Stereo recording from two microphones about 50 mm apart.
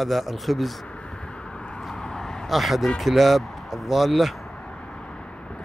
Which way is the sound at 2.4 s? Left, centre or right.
Centre.